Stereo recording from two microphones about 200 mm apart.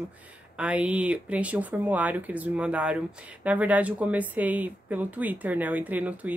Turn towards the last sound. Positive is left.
turn(degrees=-10)  # may be behind; listen again after turning